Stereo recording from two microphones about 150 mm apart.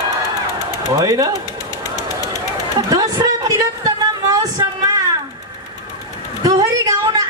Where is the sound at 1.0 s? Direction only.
25° right (ahead or behind).